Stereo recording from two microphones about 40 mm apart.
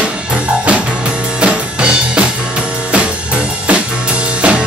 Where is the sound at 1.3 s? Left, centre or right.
Right.